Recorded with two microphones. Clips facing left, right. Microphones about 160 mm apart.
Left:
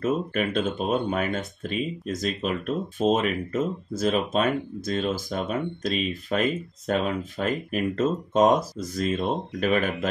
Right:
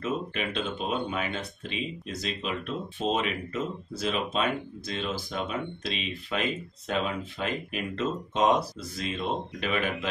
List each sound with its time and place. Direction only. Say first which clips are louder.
0.0 s speech: left 6 dB; 45° left (ahead or behind)